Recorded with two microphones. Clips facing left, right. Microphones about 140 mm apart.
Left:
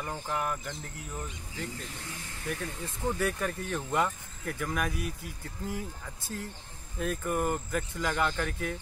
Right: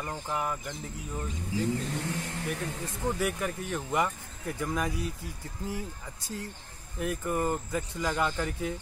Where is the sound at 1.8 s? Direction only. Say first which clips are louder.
Right 9 dB; 65° right (ahead or behind).